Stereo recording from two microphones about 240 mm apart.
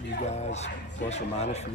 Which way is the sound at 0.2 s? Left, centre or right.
Left.